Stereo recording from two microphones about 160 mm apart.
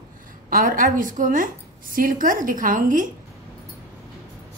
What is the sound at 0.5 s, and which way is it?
A woman's voice, 60° right (ahead or behind).